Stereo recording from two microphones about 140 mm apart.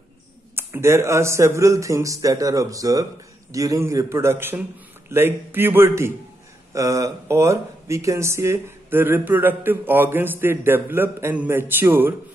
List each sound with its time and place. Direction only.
0.6 s a man's voice: 15° right (ahead or behind)